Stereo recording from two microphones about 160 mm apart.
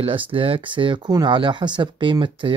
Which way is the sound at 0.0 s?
35° right (ahead or behind).